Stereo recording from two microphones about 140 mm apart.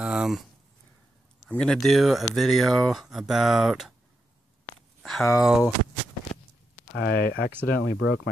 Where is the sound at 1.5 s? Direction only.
5° left (ahead or behind).